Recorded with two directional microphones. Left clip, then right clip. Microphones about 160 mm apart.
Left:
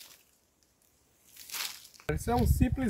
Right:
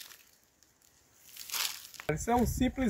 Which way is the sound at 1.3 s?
55° right (ahead or behind).